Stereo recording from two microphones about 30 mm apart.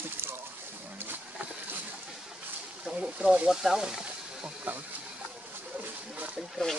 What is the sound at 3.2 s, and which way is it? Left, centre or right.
Speech, right.